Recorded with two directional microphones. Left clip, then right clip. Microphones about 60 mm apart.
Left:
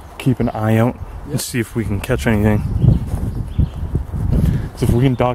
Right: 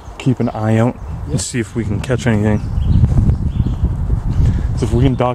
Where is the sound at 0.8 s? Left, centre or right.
Centre.